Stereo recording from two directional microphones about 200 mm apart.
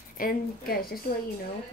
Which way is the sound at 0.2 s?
45° left (ahead or behind).